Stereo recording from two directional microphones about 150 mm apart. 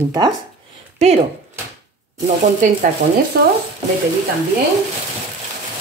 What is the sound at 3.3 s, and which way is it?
Stir, 90° right.